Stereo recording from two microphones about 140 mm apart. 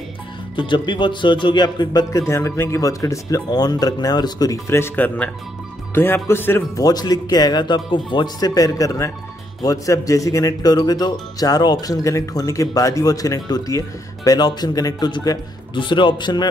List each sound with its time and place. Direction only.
0.6 s speech: 35° left (ahead or behind); by 6.6 s 15° left (ahead or behind)
6.8 s speech: 30° left (ahead or behind)